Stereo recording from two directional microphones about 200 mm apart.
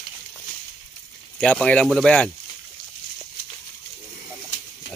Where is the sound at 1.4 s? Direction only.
5° left (ahead or behind).